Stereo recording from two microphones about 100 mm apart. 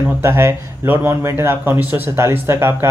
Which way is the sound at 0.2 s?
25° right (ahead or behind).